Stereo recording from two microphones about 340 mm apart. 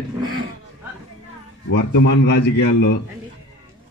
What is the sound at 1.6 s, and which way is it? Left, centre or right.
A man's voice, left.